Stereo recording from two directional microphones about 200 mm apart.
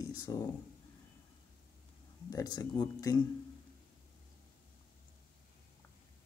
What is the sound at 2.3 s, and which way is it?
Speech, 20° left (ahead or behind).